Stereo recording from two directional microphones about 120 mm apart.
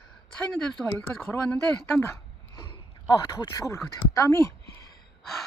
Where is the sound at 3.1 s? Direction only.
30° left (ahead or behind).